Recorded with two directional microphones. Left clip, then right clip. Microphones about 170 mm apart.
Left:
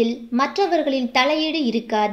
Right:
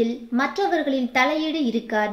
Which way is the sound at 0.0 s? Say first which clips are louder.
Left 2 dB; 25° left (ahead or behind).